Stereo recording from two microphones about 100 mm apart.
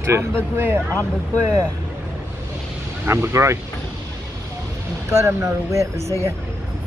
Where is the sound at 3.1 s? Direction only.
25° right (ahead or behind).